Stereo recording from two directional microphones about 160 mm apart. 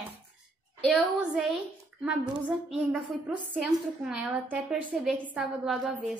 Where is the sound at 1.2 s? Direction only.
5° right (ahead or behind).